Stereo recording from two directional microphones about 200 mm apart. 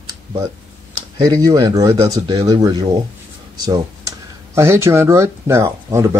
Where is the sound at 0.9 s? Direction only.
20° right (ahead or behind).